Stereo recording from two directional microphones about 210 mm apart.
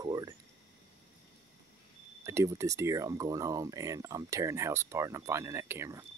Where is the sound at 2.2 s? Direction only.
15° right (ahead or behind).